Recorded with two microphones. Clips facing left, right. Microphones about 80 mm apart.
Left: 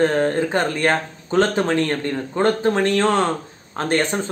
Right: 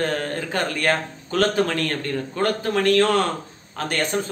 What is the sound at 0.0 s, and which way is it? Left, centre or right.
A man's voice, left.